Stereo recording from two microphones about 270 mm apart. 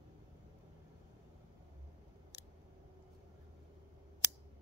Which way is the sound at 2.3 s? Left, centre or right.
Left.